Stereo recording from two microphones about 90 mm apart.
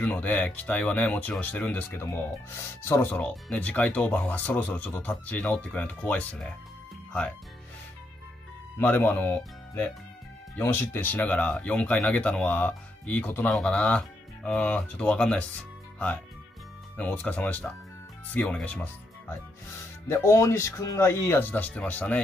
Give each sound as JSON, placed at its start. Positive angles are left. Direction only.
{"t": 0.0, "sound": "speech", "side_deg": 15}
{"t": 2.5, "sound": "speech", "side_deg": 30}
{"t": 3.1, "sound": "speech", "side_deg": 15}
{"t": 8.7, "sound": "speech", "side_deg": 25}
{"t": 10.6, "sound": "speech", "side_deg": 25}
{"t": 13.5, "sound": "speech", "side_deg": 10}
{"t": 20.1, "sound": "speech", "side_deg": 35}